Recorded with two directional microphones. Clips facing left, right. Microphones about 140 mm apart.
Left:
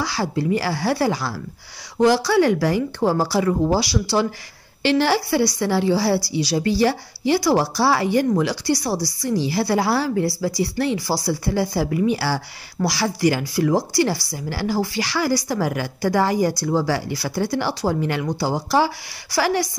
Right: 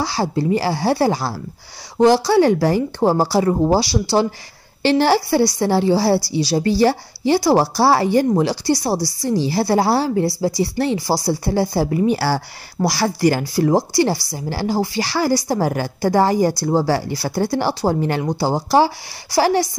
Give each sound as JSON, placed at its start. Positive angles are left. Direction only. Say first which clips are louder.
{"t": 0.0, "sound": "a woman's voice", "louder": "right 3 dB", "side_deg": -30}